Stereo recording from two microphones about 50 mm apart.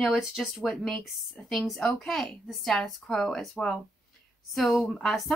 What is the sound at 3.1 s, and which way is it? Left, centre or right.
A woman's voice, centre.